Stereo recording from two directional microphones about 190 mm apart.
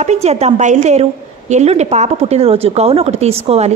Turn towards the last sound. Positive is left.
turn(degrees=-35)  # may be behind; listen again after turning